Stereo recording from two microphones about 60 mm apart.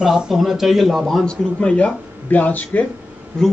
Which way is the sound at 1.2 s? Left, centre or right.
Centre.